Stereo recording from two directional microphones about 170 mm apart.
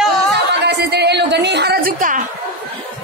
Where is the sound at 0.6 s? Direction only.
75° right (ahead or behind); by 2.2 s 55° right (ahead or behind).